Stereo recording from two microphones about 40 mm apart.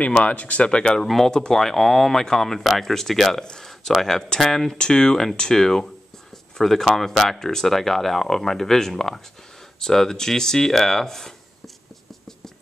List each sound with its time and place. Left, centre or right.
0.2 s speech: left
1.0 s speech: centre